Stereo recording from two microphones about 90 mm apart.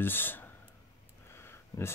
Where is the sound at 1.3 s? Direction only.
30° left (ahead or behind).